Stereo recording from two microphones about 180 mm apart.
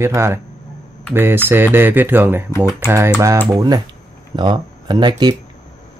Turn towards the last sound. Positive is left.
turn(degrees=-25)  # may be behind; listen again after turning